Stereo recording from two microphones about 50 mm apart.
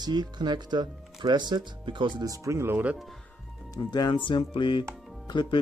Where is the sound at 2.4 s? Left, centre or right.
Right.